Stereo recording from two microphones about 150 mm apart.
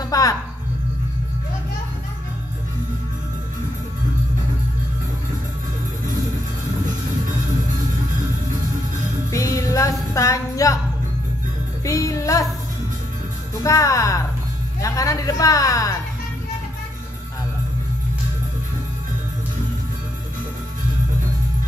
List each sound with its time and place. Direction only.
0.1 s music: 25° left (ahead or behind)
9.3 s music: 20° left (ahead or behind)
11.8 s music: 20° left (ahead or behind)
13.7 s a man's voice: 20° left (ahead or behind)